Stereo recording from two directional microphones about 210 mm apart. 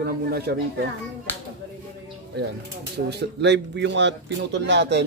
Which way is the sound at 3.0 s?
55° right (ahead or behind).